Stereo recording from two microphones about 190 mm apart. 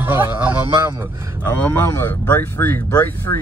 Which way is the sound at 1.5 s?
10° left (ahead or behind).